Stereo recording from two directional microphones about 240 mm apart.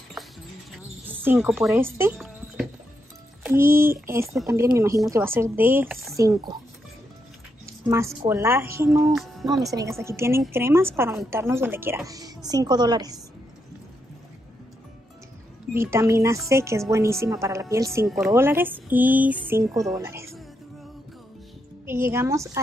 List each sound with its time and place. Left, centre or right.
0.2 s a sound: centre
0.7 s cricket: centre
3.4 s speech: centre
7.6 s speech: centre
9.1 s a woman's voice: centre
9.8 s speech: centre
15.7 s speech: centre
18.0 s speech: centre
21.8 s speech: centre